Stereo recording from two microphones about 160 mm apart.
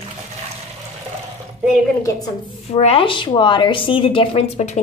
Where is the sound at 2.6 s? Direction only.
40° left (ahead or behind).